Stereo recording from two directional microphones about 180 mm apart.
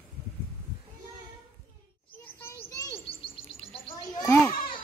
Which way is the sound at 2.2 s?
10° left (ahead or behind).